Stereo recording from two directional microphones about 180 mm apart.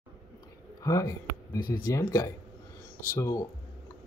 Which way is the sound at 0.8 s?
20° left (ahead or behind).